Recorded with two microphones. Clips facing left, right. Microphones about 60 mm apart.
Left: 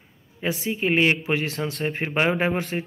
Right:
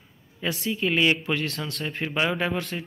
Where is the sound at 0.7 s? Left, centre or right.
Left.